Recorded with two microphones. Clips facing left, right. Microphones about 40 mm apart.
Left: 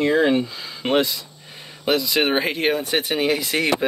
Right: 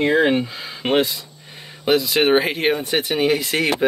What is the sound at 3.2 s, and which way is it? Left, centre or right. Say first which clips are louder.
Speech: right 4 dB; centre.